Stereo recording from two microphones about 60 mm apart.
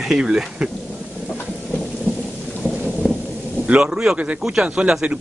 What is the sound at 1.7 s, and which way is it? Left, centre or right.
Thunder, centre.